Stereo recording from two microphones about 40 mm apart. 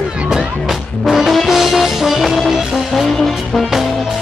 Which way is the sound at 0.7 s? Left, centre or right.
Centre.